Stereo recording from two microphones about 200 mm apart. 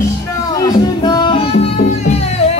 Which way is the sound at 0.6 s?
20° left (ahead or behind).